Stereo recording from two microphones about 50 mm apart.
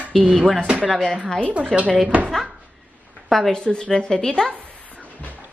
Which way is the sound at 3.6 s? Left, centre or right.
Centre.